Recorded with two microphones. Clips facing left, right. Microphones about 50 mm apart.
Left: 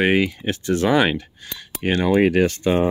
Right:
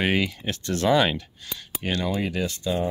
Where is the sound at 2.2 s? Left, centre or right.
Left.